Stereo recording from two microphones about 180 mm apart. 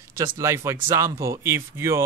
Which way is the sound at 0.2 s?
15° right (ahead or behind).